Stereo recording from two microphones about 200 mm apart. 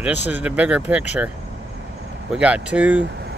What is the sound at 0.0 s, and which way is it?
Speech, 10° right (ahead or behind).